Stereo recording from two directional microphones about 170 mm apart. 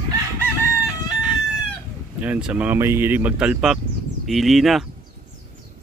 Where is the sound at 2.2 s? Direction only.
10° right (ahead or behind).